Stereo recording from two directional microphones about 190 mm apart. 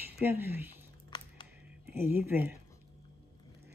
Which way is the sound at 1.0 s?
25° left (ahead or behind).